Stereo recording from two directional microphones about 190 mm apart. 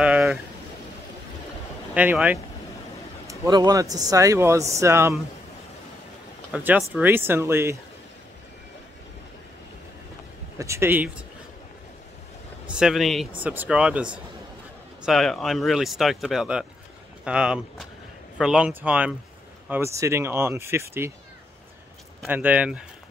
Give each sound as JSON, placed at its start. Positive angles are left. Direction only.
{"t": 0.0, "sound": "a sound", "side_deg": -5}
{"t": 2.0, "sound": "speech", "side_deg": -5}
{"t": 3.3, "sound": "speech", "side_deg": -20}
{"t": 6.5, "sound": "speech", "side_deg": -10}
{"t": 10.6, "sound": "speech", "side_deg": -15}
{"t": 12.6, "sound": "speech", "side_deg": -5}
{"t": 15.0, "sound": "speech", "side_deg": 0}
{"t": 22.2, "sound": "speech", "side_deg": -10}